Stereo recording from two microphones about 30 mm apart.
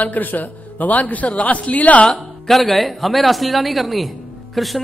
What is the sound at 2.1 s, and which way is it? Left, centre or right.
Speech, centre.